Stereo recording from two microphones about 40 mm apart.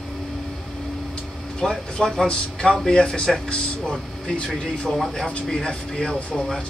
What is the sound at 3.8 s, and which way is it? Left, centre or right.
Speech, centre.